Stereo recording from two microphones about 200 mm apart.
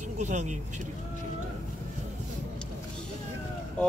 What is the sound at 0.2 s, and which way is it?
Speech, 35° right (ahead or behind).